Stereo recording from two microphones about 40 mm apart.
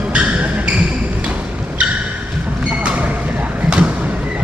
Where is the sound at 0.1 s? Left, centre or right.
Right.